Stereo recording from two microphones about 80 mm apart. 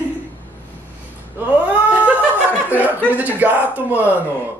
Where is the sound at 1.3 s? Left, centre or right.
Centre.